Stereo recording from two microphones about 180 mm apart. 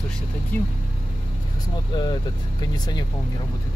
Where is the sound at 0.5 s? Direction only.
10° left (ahead or behind).